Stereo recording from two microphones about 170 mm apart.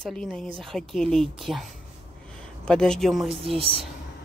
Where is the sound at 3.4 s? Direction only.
35° right (ahead or behind).